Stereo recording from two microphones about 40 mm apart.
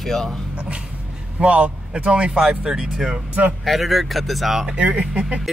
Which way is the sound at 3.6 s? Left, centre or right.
Centre.